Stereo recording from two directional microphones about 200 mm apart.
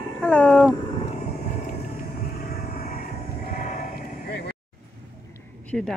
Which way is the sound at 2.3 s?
45° left (ahead or behind).